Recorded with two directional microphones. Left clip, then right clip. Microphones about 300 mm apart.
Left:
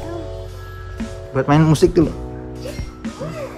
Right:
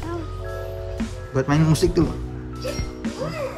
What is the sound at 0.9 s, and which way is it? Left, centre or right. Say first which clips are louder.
Speech: left 4 dB; centre.